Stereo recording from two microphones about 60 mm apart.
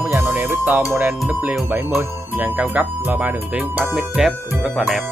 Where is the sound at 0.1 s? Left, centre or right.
Right.